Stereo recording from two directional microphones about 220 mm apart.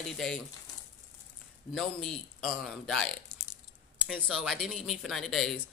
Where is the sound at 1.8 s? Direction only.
Centre (ahead or behind).